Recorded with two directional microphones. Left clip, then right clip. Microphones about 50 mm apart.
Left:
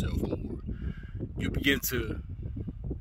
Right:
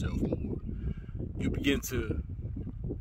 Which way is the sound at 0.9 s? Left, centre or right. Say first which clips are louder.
Left 1 dB; right.